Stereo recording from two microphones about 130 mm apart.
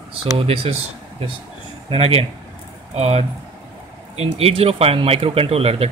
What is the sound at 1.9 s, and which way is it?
Speech, 50° right (ahead or behind).